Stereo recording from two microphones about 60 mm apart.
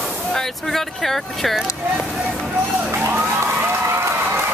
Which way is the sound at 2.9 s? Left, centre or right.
Right.